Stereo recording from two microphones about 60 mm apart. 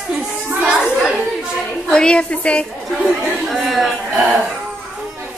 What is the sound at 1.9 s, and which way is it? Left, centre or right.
Speech, centre.